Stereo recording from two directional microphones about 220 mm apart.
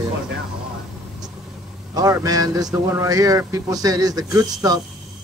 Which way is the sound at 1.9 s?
15° right (ahead or behind).